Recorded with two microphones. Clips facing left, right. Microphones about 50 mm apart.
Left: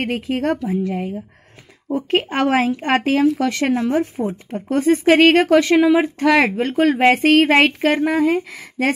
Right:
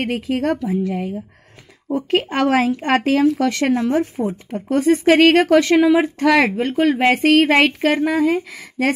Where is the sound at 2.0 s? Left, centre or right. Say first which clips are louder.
Even; left.